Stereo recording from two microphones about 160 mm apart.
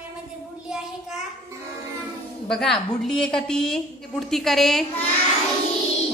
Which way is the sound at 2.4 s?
5° left (ahead or behind).